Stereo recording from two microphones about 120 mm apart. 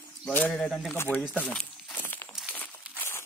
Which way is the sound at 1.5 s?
10° left (ahead or behind).